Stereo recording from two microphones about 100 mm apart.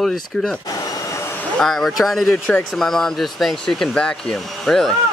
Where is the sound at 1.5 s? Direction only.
5° left (ahead or behind).